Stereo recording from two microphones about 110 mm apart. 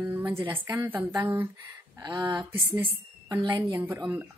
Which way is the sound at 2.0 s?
40° right (ahead or behind).